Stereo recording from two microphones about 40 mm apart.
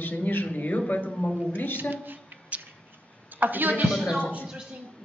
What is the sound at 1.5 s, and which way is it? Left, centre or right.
Speech, left.